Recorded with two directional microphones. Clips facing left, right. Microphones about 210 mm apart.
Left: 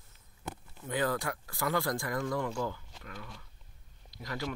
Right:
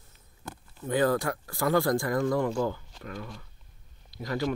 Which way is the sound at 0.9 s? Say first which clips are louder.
Right 7 dB; 40° right (ahead or behind).